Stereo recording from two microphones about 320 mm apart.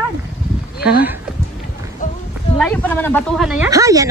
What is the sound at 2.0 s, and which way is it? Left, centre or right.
Speech, left.